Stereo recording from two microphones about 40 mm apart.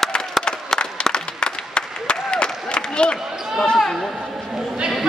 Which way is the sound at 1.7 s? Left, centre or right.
Left.